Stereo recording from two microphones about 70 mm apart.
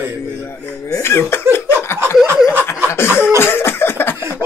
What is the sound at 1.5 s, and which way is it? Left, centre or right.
Laughter, left.